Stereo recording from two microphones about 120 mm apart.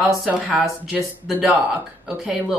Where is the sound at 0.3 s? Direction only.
10° right (ahead or behind).